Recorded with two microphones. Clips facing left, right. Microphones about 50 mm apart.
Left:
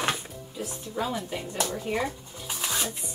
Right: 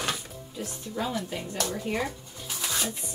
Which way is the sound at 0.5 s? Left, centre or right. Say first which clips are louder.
Left 1 dB; centre.